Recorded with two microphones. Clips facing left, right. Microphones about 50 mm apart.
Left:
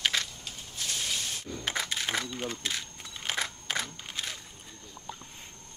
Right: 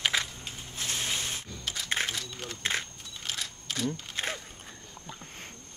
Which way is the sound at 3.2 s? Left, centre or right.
Left.